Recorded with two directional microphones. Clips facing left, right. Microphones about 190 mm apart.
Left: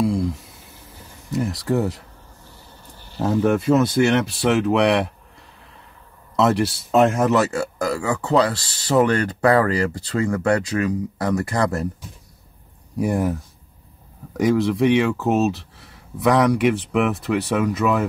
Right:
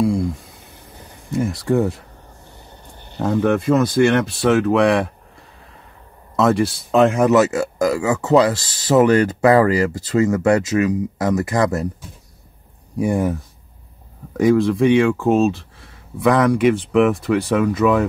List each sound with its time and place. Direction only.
3.2 s speech: 5° left (ahead or behind)
6.3 s speech: 5° left (ahead or behind)
11.3 s speech: 15° right (ahead or behind)
13.0 s speech: 5° left (ahead or behind)